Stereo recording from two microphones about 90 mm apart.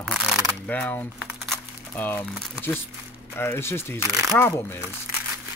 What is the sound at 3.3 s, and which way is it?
Speech, 25° left (ahead or behind).